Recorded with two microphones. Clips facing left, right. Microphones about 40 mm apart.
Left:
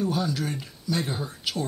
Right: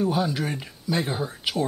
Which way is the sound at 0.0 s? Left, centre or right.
Centre.